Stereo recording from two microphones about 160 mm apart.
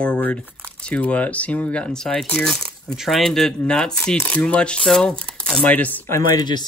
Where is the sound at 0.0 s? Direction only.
10° left (ahead or behind).